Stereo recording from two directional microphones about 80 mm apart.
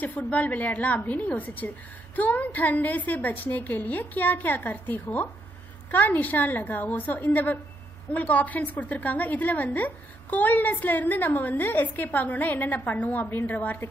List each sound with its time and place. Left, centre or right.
0.0 s a woman's voice: centre